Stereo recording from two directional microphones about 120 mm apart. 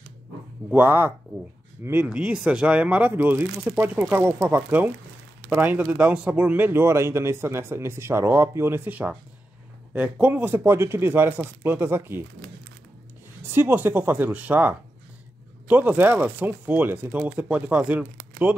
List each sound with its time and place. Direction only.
0.7 s speech: 15° right (ahead or behind)
2.0 s speech: 10° right (ahead or behind)
13.5 s speech: 20° right (ahead or behind)